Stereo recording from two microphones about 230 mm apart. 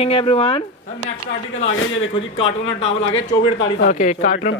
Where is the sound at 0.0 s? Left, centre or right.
Left.